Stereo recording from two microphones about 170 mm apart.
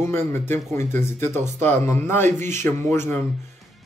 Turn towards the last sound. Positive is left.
turn(degrees=15)  # may be behind; listen again after turning